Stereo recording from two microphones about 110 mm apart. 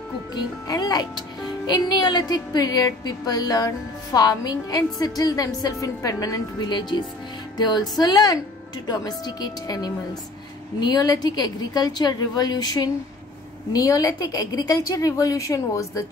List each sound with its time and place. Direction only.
0.3 s a woman's voice: 40° left (ahead or behind)